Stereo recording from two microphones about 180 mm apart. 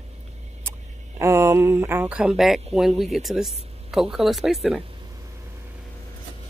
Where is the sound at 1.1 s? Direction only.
15° right (ahead or behind).